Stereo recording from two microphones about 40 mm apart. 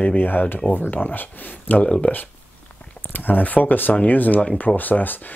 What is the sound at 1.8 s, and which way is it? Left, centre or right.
Speech, left.